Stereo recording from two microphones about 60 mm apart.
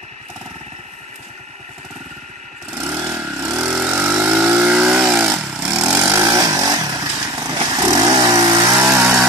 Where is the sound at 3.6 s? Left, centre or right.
Centre.